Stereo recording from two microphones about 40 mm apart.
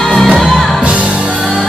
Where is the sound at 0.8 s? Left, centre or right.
Right.